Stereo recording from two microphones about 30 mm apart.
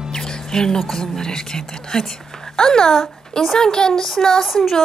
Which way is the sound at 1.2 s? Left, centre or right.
Left.